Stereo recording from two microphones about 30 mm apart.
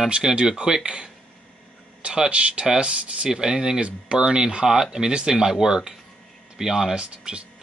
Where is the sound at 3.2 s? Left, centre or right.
Right.